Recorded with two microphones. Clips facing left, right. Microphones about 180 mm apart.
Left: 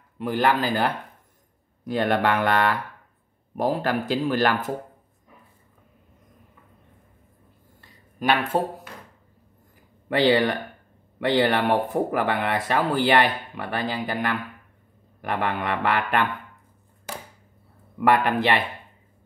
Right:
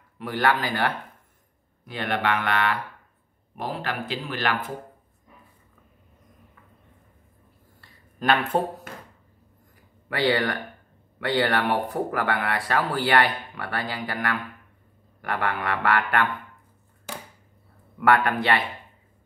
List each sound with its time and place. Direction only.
0.2 s speech: 25° left (ahead or behind)
1.9 s speech: 40° left (ahead or behind)
7.8 s a sound: 10° left (ahead or behind)
10.0 s speech: 25° left (ahead or behind)
17.9 s speech: 20° left (ahead or behind)